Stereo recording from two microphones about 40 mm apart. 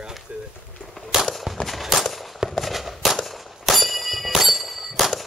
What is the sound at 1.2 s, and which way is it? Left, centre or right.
Gunshot, centre.